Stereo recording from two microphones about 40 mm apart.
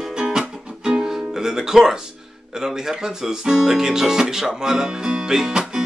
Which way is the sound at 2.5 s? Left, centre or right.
Centre.